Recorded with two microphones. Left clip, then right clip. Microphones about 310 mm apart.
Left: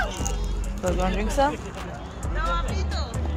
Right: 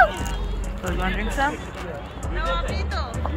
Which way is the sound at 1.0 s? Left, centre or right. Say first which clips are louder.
Even; left.